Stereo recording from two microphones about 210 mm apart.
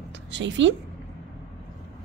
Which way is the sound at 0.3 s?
60° right (ahead or behind).